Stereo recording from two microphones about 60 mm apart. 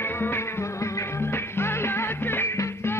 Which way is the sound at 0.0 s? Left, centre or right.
Left.